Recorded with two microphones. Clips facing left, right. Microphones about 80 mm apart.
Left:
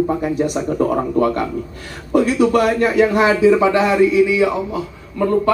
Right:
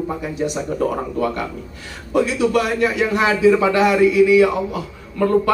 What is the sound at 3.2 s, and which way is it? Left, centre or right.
A man's voice, left.